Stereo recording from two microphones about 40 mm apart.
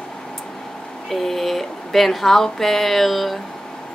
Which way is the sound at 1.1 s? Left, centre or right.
Centre.